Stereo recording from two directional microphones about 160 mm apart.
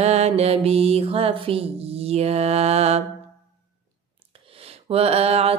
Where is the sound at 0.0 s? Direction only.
40° right (ahead or behind).